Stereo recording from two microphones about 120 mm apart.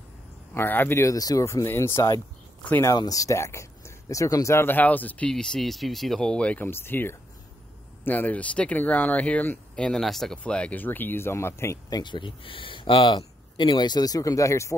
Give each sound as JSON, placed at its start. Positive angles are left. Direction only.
{"t": 0.6, "sound": "speech", "side_deg": 15}
{"t": 12.0, "sound": "speech", "side_deg": 40}